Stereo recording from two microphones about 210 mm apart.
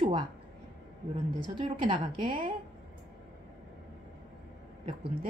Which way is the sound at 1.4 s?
25° right (ahead or behind).